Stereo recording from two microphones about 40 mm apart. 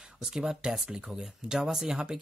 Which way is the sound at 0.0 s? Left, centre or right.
Centre.